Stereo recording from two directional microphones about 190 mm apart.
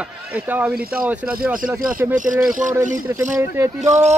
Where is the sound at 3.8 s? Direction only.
35° right (ahead or behind).